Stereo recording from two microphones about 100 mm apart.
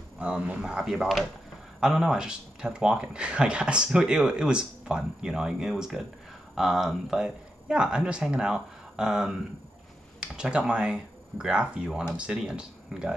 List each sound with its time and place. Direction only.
0.2 s speech: 10° right (ahead or behind)